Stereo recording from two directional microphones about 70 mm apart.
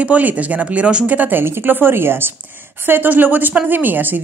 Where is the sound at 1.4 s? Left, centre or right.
Right.